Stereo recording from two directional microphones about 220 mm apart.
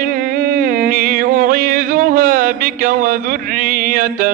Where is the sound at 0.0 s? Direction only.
40° right (ahead or behind).